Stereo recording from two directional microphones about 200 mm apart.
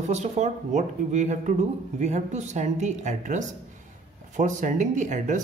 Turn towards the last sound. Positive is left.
turn(degrees=-40)  # may be behind; listen again after turning